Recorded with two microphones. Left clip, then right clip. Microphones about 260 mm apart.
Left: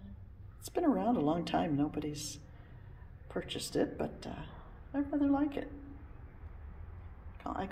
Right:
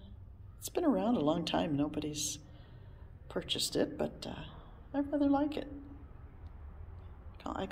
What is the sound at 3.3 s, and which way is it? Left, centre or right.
Speech, centre.